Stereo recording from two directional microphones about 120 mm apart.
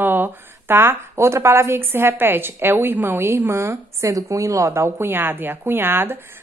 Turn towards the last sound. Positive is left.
turn(degrees=-20)  # may be behind; listen again after turning